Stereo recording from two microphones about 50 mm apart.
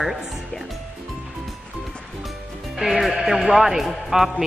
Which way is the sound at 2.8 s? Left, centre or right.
Centre.